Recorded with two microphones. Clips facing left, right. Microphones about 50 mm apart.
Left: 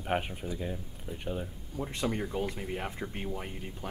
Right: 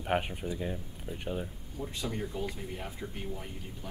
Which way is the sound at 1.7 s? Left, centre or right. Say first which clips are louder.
Left 4 dB; left.